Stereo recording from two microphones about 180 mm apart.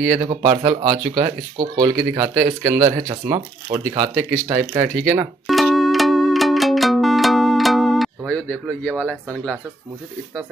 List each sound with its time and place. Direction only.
0.2 s speech: 25° right (ahead or behind)
5.5 s music: centre (ahead or behind)